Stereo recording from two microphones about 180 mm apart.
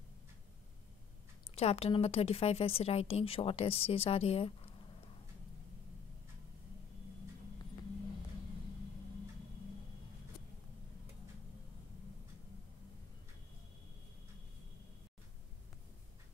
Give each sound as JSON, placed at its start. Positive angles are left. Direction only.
{"t": 1.5, "sound": "a woman's voice", "side_deg": 35}